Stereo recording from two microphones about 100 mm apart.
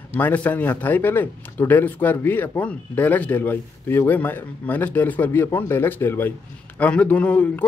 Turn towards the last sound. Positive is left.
turn(degrees=15)  # may be behind; listen again after turning